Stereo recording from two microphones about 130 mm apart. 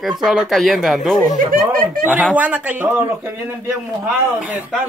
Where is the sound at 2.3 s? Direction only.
10° right (ahead or behind).